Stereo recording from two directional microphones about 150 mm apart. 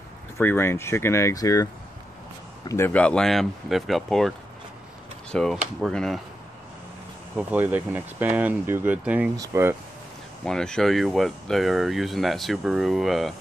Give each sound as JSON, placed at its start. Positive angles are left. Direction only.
{"t": 0.4, "sound": "speech", "side_deg": 15}
{"t": 2.7, "sound": "speech", "side_deg": 15}
{"t": 5.3, "sound": "speech", "side_deg": 5}
{"t": 7.3, "sound": "speech", "side_deg": -10}
{"t": 10.4, "sound": "speech", "side_deg": 5}